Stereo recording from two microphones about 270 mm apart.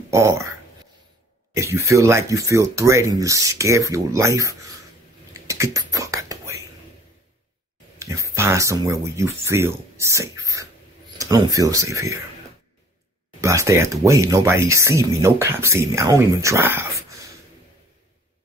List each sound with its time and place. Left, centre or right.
0.1 s speech: centre
5.3 s whispering: centre
8.0 s speech: centre
13.4 s speech: centre